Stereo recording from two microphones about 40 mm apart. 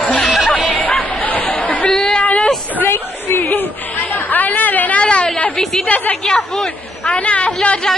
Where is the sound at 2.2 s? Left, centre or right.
Left.